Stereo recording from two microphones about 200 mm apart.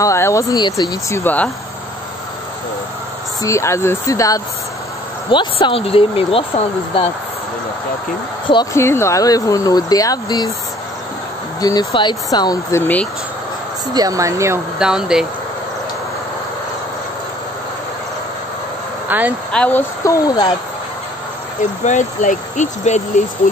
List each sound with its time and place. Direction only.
0.0 s speech: 15° left (ahead or behind)
3.4 s speech: 15° left (ahead or behind)
8.5 s speech: 15° left (ahead or behind)
11.6 s speech: 20° left (ahead or behind)
12.8 s speech: 5° left (ahead or behind)
13.9 s speech: 15° right (ahead or behind)
14.8 s speech: 5° right (ahead or behind)
19.0 s speech: 10° right (ahead or behind)
19.5 s speech: 10° left (ahead or behind)
21.8 s speech: 40° left (ahead or behind)